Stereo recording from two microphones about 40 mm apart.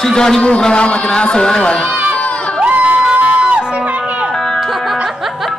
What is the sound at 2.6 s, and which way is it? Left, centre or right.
Crowd, right.